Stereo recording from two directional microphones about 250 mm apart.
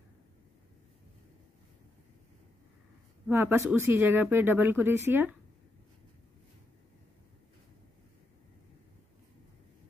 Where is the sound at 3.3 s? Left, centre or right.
Centre.